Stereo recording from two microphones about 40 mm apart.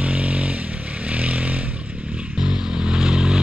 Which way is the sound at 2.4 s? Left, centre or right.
Right.